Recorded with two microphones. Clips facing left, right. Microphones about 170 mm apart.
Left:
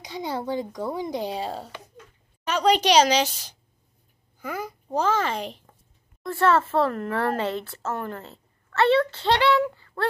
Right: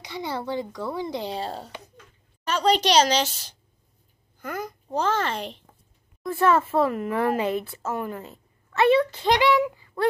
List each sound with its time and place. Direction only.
0.0 s a child's voice: 15° left (ahead or behind)
6.2 s a woman's voice: 10° right (ahead or behind)